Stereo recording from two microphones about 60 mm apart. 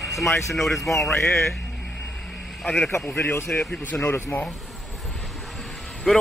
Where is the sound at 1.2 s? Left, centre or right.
Left.